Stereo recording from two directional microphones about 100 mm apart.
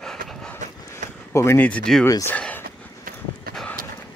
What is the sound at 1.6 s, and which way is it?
Speech, 15° left (ahead or behind).